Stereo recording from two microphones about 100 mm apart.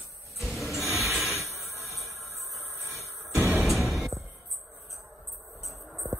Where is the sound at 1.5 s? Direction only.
Centre (ahead or behind).